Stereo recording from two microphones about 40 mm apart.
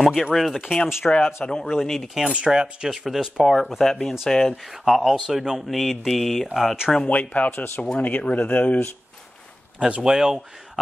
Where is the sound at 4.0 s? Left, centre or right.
Centre.